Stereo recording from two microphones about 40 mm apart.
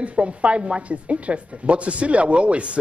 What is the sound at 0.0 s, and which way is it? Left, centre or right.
Speech, right.